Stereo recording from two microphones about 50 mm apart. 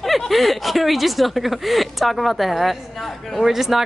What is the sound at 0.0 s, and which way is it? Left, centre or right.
Speech, centre.